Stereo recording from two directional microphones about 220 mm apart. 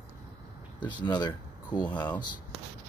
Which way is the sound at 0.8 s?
20° left (ahead or behind).